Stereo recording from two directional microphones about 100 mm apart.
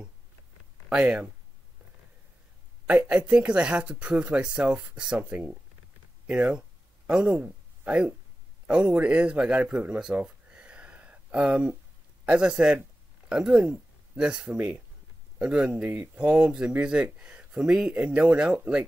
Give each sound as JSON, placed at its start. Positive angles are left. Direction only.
{"t": 0.8, "sound": "speech", "side_deg": -15}
{"t": 2.9, "sound": "speech", "side_deg": -15}